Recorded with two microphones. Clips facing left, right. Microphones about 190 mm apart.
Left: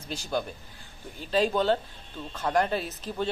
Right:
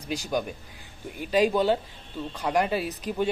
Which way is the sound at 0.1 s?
15° right (ahead or behind).